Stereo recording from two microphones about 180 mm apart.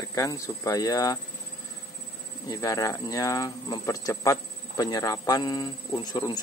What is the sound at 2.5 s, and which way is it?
Speech, 20° left (ahead or behind).